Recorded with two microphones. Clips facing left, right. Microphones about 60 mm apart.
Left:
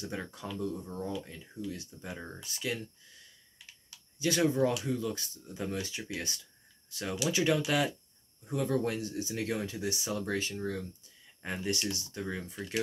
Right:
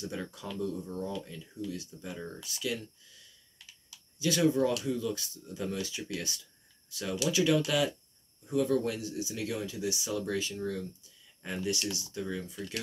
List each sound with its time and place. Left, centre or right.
0.0 s speech: left
4.2 s speech: left